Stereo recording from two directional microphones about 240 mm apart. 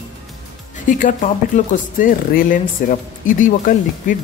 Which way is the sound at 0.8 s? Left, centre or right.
Left.